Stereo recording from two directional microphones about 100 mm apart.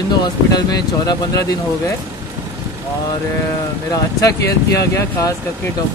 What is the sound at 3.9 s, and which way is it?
Speech, 35° left (ahead or behind).